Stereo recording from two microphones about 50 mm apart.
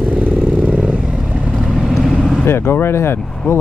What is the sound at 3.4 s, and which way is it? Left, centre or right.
Speech, left.